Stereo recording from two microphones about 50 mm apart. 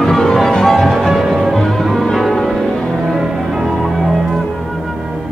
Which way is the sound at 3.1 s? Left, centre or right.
Centre.